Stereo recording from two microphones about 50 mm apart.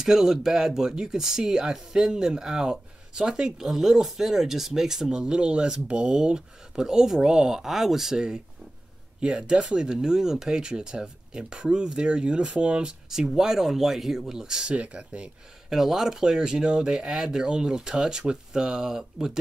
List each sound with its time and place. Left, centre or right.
0.0 s speech: centre
13.1 s speech: centre
15.7 s speech: centre